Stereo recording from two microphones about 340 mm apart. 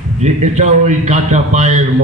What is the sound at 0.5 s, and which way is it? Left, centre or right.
A man's voice, right.